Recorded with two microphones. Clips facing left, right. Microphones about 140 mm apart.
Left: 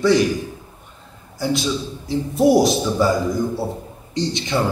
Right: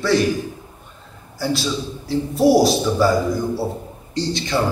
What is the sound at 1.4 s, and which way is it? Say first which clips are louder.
A man's voice: left 1 dB; 20° left (ahead or behind).